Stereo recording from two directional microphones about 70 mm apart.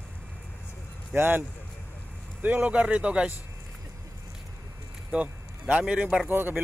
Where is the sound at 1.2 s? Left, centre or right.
Right; by 3.3 s centre.